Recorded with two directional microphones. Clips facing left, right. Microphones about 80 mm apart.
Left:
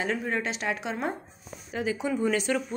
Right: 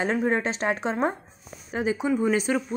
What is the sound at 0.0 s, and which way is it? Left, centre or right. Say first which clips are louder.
Speech: right 5 dB; right.